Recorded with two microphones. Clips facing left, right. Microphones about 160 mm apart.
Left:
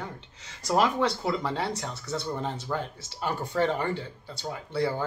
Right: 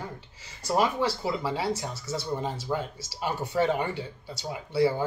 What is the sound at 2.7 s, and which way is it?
A man's voice, 15° right (ahead or behind).